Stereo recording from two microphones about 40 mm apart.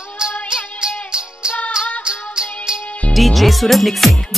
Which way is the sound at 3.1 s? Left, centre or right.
Centre.